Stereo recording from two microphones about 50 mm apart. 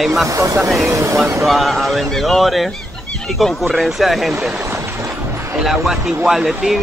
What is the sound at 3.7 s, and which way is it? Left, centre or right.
Speech, centre.